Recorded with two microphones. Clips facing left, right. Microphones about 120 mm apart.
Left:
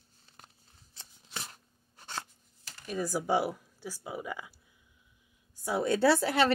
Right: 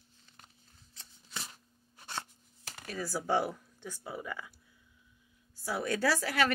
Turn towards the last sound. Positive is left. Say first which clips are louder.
# left 5 dB
turn(degrees=25)  # may be behind; listen again after turning